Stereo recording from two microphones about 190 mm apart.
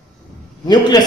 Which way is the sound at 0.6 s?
20° left (ahead or behind).